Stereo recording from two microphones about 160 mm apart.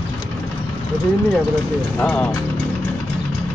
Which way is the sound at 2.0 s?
5° left (ahead or behind).